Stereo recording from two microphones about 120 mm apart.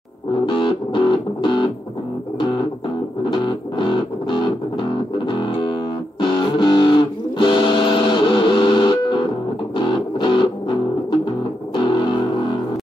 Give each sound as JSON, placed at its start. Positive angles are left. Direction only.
{"t": 0.5, "sound": "music", "side_deg": 40}
{"t": 3.3, "sound": "music", "side_deg": 40}